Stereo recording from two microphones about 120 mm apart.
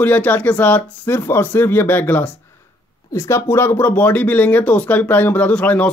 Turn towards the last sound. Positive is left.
turn(degrees=10)  # may be behind; listen again after turning